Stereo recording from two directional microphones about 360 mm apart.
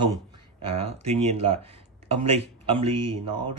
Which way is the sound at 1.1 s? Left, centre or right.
Centre.